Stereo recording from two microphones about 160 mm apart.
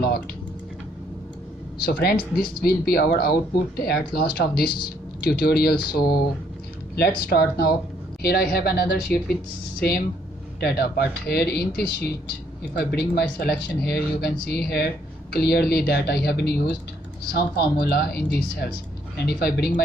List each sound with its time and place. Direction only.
1.8 s speech: 75° left (ahead or behind)
12.7 s speech: 90° left
15.3 s speech: 85° left